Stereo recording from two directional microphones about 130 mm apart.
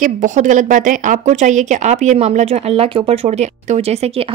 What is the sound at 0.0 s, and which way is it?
Speech, 70° right (ahead or behind).